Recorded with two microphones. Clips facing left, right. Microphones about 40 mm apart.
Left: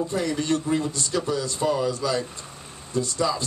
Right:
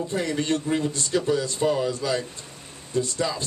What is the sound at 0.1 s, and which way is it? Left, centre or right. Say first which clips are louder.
A man's voice: left 1 dB; right.